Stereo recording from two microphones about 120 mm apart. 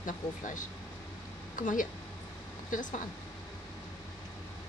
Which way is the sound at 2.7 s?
90° left.